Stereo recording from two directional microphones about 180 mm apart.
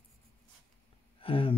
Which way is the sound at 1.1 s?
30° left (ahead or behind).